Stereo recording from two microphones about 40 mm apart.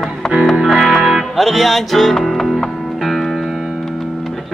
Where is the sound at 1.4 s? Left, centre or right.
Centre.